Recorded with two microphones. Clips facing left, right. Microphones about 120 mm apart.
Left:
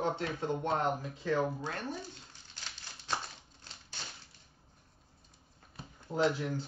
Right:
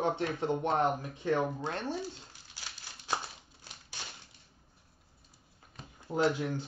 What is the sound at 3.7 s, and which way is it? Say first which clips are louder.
Typewriter: right 1 dB; 10° right (ahead or behind).